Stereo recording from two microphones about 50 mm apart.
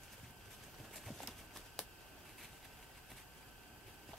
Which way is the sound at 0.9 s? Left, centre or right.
Centre.